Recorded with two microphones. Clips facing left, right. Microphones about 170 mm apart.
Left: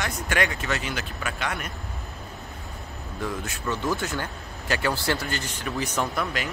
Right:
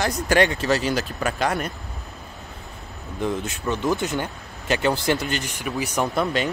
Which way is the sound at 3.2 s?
20° right (ahead or behind).